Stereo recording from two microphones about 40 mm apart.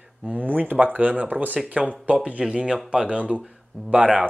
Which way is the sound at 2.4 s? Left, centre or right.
Right.